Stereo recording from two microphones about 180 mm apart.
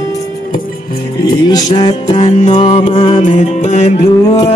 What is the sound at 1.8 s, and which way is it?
Music, 25° left (ahead or behind).